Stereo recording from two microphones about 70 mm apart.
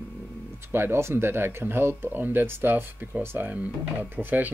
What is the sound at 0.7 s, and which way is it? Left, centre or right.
Speech, right.